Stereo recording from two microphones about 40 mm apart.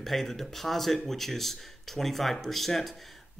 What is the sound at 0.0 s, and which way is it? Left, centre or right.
A man's voice, centre.